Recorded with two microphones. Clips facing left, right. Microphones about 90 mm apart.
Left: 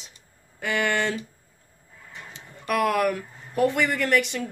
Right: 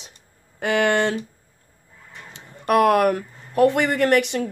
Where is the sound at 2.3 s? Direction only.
60° right (ahead or behind).